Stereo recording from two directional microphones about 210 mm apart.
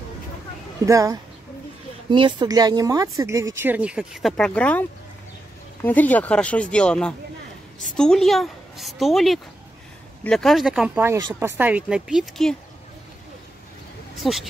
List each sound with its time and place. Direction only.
0.8 s speech: 15° right (ahead or behind)
14.2 s speech: centre (ahead or behind)